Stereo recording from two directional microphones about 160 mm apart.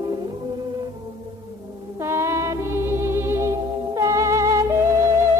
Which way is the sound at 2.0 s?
15° right (ahead or behind).